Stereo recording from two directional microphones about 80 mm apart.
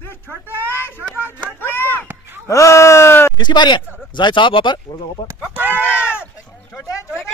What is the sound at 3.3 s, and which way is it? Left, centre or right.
Speech, left.